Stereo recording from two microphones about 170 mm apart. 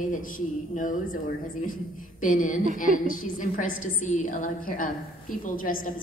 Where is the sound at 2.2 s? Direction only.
50° left (ahead or behind).